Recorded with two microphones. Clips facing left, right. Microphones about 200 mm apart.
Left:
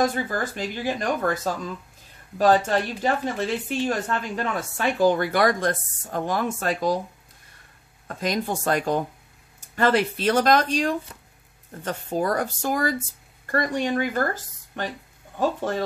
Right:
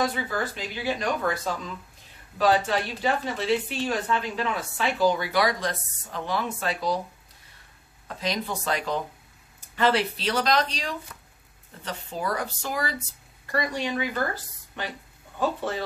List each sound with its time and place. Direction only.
0.0 s a woman's voice: 45° left (ahead or behind)
8.1 s a woman's voice: 50° left (ahead or behind)